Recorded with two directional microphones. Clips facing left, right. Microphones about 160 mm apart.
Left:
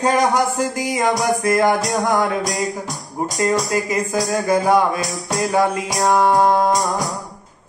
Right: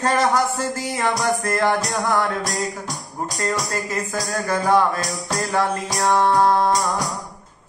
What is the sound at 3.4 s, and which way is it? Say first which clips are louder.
Speech: left 6 dB; 10° left (ahead or behind).